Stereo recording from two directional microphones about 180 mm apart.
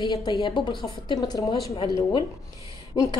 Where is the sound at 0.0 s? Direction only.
25° left (ahead or behind).